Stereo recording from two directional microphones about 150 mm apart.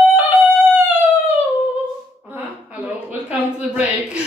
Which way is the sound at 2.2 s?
10° right (ahead or behind).